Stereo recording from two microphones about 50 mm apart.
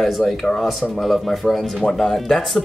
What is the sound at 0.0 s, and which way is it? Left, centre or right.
Speech, centre.